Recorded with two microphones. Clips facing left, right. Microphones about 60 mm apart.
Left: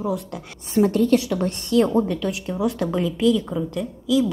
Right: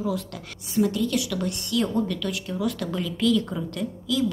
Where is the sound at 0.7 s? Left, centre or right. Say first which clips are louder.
Left 6 dB; left.